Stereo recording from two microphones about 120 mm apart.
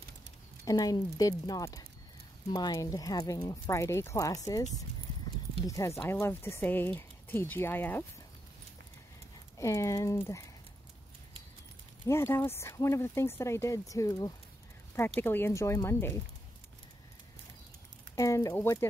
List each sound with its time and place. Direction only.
0.7 s a woman's voice: 30° left (ahead or behind)
5.7 s speech: 25° left (ahead or behind)
9.6 s speech: 25° left (ahead or behind)
12.1 s speech: 20° left (ahead or behind)
15.1 s speech: 15° left (ahead or behind)
18.1 s speech: 25° left (ahead or behind)